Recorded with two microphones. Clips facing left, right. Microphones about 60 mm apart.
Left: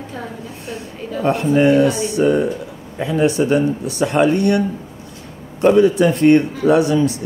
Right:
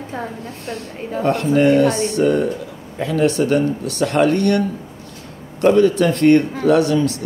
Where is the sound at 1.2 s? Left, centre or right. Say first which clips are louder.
Left 1 dB; centre.